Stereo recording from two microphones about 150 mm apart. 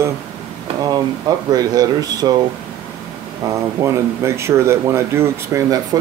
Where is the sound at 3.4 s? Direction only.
20° right (ahead or behind).